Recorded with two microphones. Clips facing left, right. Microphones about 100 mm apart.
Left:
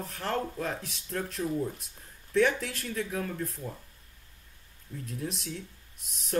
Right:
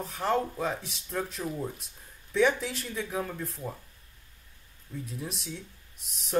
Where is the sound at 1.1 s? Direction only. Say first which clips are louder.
Right 1 dB; 10° right (ahead or behind).